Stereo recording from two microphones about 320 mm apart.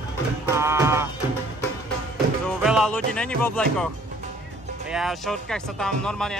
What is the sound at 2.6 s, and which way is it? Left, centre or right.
Speech, centre.